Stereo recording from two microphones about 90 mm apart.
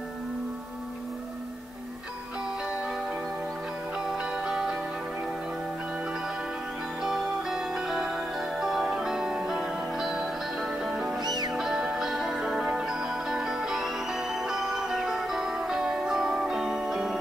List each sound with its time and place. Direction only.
4.0 s music: 5° right (ahead or behind)
7.0 s music: 5° right (ahead or behind)
11.2 s music: 50° right (ahead or behind)
11.5 s music: 5° right (ahead or behind)